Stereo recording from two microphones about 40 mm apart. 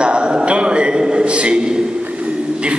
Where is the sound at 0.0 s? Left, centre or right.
Right.